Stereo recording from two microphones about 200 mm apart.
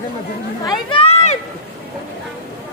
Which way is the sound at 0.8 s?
30° left (ahead or behind).